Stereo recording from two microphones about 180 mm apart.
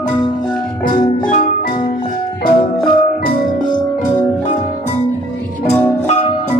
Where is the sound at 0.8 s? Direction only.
50° left (ahead or behind).